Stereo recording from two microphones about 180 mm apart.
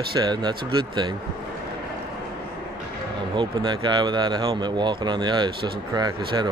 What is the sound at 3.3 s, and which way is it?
Speech, 25° right (ahead or behind).